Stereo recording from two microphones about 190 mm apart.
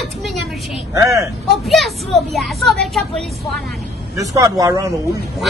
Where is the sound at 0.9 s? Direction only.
15° right (ahead or behind).